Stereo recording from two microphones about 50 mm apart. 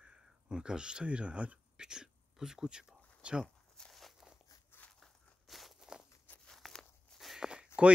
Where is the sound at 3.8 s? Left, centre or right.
Centre.